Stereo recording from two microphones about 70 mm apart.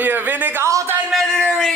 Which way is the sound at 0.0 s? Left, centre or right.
Right.